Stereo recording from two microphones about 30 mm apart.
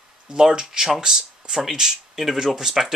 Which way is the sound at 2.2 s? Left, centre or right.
Centre.